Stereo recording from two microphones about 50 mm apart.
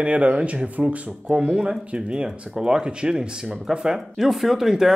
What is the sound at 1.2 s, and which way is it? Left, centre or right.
Speech, centre.